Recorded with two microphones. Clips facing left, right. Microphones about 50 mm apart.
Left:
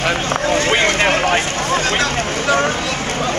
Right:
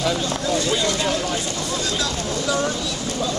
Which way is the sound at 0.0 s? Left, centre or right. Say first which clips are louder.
Left 5 dB; left.